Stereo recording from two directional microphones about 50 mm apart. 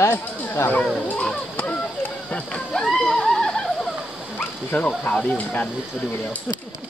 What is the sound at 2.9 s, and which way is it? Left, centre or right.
Snicker, centre.